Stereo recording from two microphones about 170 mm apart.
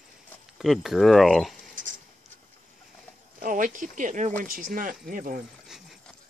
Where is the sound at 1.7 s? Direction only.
50° right (ahead or behind).